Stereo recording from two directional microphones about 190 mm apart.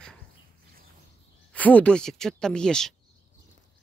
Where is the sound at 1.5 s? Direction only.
5° left (ahead or behind).